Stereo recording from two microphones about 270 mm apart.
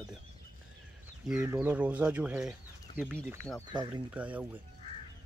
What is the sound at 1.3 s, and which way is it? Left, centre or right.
Speech, centre.